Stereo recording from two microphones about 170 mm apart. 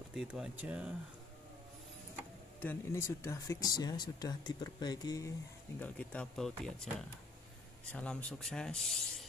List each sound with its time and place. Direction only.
0.1 s speech: 5° right (ahead or behind)
2.6 s speech: 15° left (ahead or behind)
5.8 s speech: 5° left (ahead or behind)